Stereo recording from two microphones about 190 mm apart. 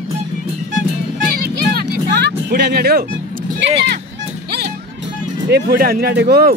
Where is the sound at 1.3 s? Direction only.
55° right (ahead or behind).